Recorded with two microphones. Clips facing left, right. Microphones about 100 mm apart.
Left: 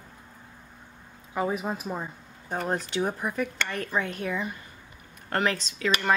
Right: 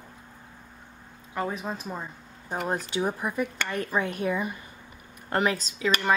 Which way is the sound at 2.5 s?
5° right (ahead or behind).